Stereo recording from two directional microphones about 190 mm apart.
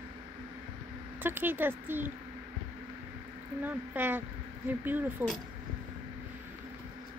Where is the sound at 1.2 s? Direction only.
10° right (ahead or behind).